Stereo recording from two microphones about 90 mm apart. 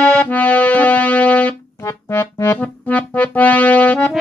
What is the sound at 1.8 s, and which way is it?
Music, 25° left (ahead or behind).